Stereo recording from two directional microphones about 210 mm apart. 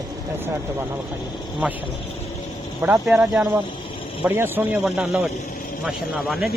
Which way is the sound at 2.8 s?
10° right (ahead or behind).